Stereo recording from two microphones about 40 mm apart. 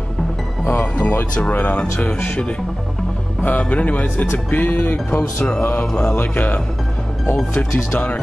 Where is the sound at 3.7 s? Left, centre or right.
Left.